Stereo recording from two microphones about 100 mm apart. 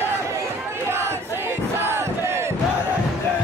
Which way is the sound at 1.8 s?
25° right (ahead or behind).